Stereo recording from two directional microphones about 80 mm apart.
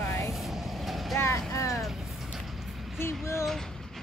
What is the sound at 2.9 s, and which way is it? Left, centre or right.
Speech, left.